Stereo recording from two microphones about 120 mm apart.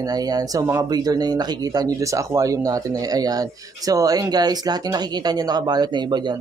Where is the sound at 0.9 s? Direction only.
35° right (ahead or behind).